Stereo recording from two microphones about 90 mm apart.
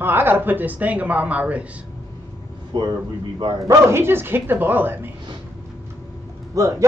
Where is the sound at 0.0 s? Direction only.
25° right (ahead or behind).